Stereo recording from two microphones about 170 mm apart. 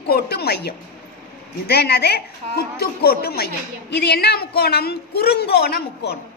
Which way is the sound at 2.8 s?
65° left (ahead or behind).